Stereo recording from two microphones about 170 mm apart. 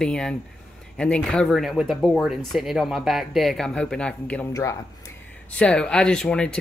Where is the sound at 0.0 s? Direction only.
5° left (ahead or behind).